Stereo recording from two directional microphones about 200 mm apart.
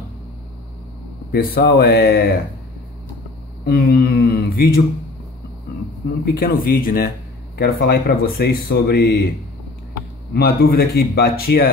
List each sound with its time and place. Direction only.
1.3 s speech: 50° left (ahead or behind)
3.6 s speech: 50° left (ahead or behind)
6.2 s speech: 50° left (ahead or behind)
10.3 s speech: 50° left (ahead or behind)